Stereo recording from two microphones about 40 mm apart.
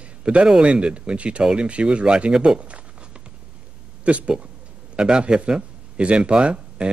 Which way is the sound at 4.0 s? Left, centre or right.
Right.